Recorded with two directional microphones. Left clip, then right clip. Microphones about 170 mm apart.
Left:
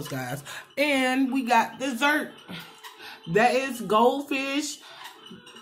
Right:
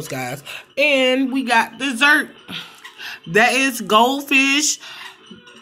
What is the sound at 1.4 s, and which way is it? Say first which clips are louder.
Speech: right 5 dB; 30° right (ahead or behind).